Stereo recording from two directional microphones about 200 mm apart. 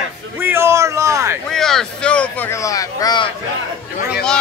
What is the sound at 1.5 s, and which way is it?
Speech, centre (ahead or behind).